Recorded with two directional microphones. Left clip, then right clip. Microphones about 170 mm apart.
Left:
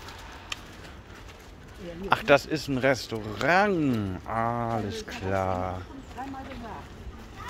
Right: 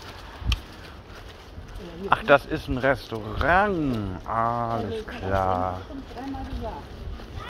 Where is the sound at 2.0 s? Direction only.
30° left (ahead or behind).